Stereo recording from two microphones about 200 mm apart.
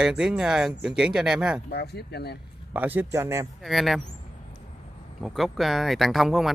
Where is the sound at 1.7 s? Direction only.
55° left (ahead or behind).